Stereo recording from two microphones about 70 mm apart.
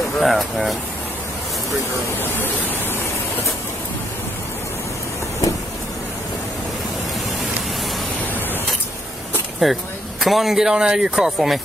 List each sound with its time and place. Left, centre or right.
0.2 s speech: centre
2.1 s a sound: left
9.6 s speech: centre